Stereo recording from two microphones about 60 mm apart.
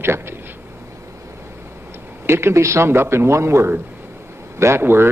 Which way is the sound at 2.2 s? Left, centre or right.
Right.